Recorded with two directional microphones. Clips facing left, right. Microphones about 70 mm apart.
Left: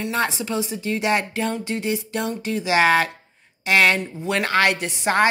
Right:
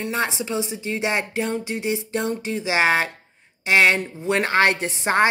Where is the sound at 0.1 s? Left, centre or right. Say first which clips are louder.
Left 1 dB; centre.